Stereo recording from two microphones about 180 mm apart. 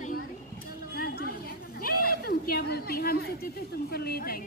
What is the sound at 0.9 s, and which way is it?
Chatter, 55° left (ahead or behind).